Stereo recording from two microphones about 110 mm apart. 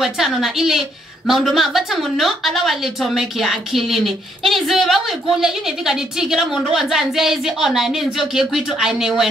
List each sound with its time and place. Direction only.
0.0 s a woman's voice: centre (ahead or behind)